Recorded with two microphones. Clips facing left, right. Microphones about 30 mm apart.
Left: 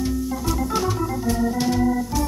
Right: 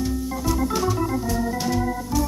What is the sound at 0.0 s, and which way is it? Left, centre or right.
Organ, centre.